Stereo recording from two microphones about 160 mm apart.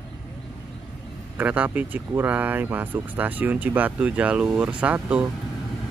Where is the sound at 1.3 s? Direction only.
10° right (ahead or behind).